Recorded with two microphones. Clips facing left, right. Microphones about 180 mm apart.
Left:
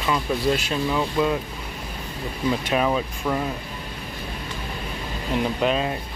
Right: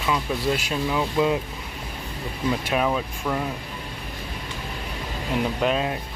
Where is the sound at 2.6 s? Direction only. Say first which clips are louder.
Left 2 dB; centre (ahead or behind).